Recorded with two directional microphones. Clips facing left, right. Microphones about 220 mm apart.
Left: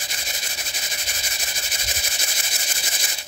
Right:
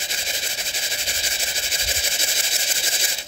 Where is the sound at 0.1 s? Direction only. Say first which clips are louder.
Right 3 dB; 25° right (ahead or behind).